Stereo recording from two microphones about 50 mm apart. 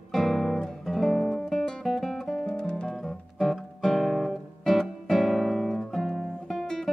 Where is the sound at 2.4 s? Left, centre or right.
Centre.